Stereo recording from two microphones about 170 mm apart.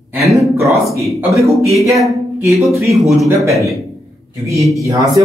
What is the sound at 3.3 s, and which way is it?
Speech, 20° right (ahead or behind).